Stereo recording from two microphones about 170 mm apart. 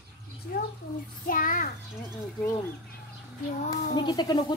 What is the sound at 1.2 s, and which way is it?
Speech, 55° left (ahead or behind).